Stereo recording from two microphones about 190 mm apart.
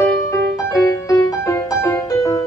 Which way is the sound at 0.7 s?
20° left (ahead or behind).